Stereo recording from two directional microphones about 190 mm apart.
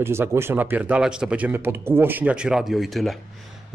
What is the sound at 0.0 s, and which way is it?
Speech, 15° right (ahead or behind).